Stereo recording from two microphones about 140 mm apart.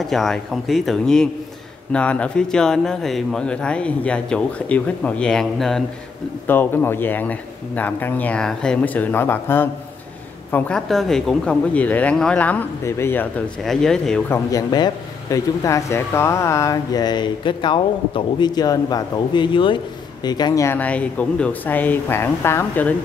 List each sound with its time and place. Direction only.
0.0 s speech: centre (ahead or behind)
6.4 s speech: 15° left (ahead or behind)
10.5 s speech: 5° left (ahead or behind)
13.6 s speech: 5° left (ahead or behind)
14.3 s speech: 25° left (ahead or behind)